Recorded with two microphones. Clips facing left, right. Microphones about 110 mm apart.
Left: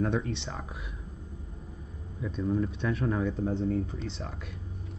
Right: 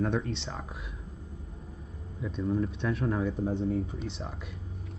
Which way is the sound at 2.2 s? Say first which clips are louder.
Even; centre (ahead or behind).